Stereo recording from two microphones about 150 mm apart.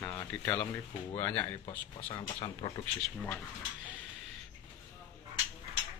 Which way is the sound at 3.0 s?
10° left (ahead or behind).